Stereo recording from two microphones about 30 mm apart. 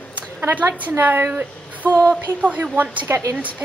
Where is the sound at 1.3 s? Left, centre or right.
Right.